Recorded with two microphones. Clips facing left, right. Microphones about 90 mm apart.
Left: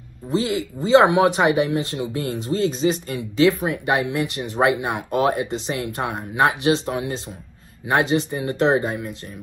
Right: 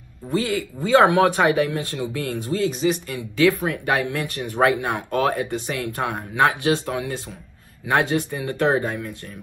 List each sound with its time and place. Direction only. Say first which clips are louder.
0.3 s speech: left 1 dB; 20° left (ahead or behind)